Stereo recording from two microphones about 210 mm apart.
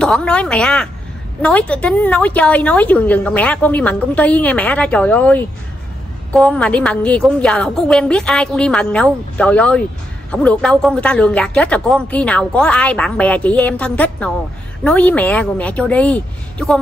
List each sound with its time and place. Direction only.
0.0 s a woman's voice: 5° left (ahead or behind)